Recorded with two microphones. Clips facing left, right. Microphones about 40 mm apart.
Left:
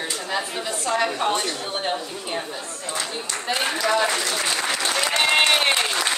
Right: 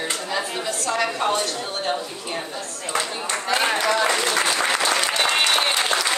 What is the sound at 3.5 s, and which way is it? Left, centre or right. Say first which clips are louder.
Speech: right 3 dB; right.